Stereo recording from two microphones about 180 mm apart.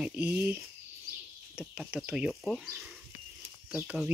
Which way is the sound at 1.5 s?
Centre (ahead or behind).